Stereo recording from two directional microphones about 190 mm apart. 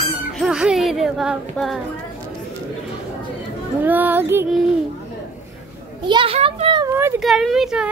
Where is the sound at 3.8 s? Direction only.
10° right (ahead or behind).